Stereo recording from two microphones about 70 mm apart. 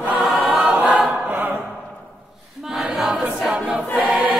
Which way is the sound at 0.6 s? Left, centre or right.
Centre.